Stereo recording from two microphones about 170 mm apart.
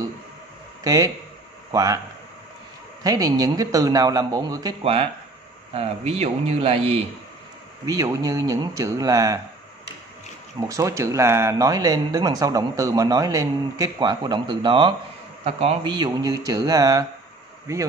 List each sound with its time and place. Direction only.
0.8 s a man's voice: 20° right (ahead or behind)
3.0 s speech: 20° right (ahead or behind)
4.8 s speech: 35° right (ahead or behind)
7.8 s speech: 20° right (ahead or behind)
10.7 s a man's voice: 20° right (ahead or behind)